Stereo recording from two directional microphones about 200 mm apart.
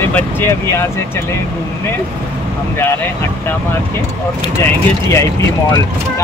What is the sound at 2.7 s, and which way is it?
Speech, 10° left (ahead or behind).